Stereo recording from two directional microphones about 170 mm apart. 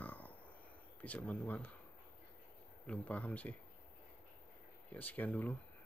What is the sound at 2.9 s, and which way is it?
Speech, 10° left (ahead or behind).